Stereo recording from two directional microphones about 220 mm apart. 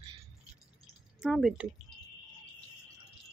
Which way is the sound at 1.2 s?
Centre (ahead or behind).